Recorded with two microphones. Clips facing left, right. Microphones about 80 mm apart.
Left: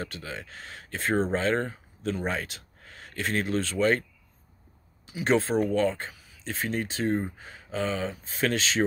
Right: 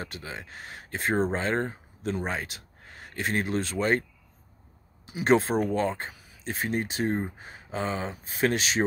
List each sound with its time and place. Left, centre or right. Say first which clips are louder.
0.0 s speech: left 1 dB; centre
5.1 s speech: right 1 dB; right
6.5 s speech: right 1 dB; centre